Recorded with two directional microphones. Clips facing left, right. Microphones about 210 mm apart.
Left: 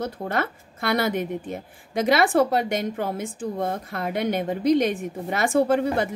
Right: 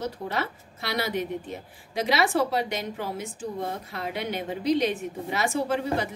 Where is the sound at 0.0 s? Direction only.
50° left (ahead or behind).